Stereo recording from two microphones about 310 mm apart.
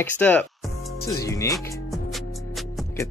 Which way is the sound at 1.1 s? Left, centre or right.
Centre.